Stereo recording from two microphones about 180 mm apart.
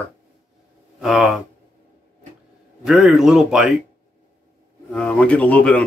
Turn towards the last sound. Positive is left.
turn(degrees=5)  # may be behind; listen again after turning